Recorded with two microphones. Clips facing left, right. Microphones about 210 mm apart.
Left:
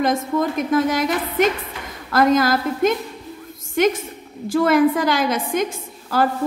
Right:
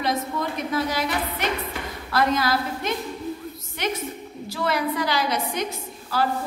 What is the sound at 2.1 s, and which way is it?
A woman's voice, 45° left (ahead or behind).